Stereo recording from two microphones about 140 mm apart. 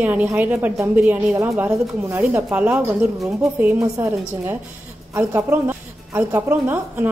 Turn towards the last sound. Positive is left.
turn(degrees=-15)  # may be behind; listen again after turning